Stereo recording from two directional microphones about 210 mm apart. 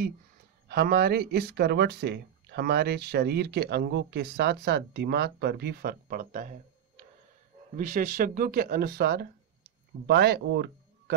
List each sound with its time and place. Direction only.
0.7 s speech: 50° right (ahead or behind)
7.7 s speech: 40° right (ahead or behind)